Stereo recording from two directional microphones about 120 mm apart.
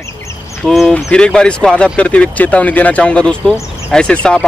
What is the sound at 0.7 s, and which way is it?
Speech, centre (ahead or behind).